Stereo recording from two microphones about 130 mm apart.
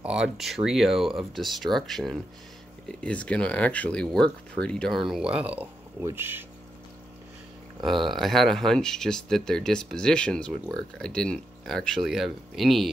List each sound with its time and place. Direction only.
0.0 s speech: 5° right (ahead or behind)
7.8 s speech: centre (ahead or behind)